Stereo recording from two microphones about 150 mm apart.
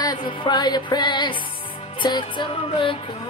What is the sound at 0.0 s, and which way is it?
Music, 30° left (ahead or behind).